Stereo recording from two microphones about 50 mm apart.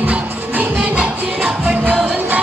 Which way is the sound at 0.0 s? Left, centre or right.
Right.